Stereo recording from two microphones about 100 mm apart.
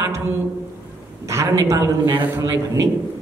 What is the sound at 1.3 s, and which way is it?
A man's voice, 30° right (ahead or behind).